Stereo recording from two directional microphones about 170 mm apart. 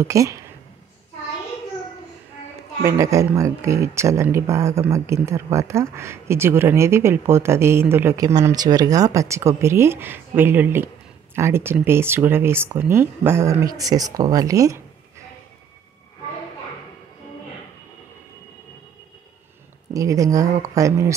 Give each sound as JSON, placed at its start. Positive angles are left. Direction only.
{"t": 0.0, "sound": "speech", "side_deg": -20}
{"t": 3.0, "sound": "speech", "side_deg": -20}
{"t": 19.9, "sound": "speech", "side_deg": -20}